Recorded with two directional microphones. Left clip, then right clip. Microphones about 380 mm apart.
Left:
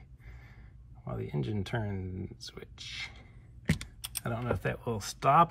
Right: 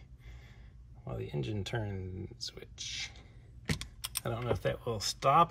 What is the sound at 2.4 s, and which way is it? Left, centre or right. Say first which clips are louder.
Computer keyboard: right 2 dB; centre.